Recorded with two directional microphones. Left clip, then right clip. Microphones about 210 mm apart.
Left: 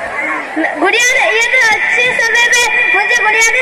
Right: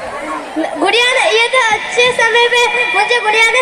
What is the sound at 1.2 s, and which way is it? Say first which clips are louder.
Music: left 1 dB; 65° right (ahead or behind).